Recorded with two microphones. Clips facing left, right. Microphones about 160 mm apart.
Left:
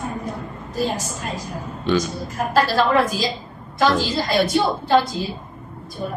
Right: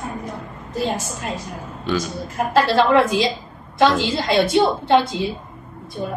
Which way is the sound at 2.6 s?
25° right (ahead or behind).